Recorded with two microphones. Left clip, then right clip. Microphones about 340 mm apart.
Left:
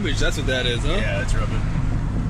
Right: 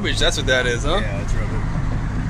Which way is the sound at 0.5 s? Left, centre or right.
Right.